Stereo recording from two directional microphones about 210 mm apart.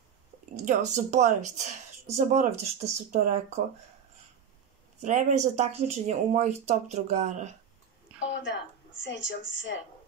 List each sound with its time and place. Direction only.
0.7 s speech: 35° right (ahead or behind)
5.0 s speech: 35° right (ahead or behind)
8.1 s a sound: 5° right (ahead or behind)
9.0 s speech: 60° left (ahead or behind)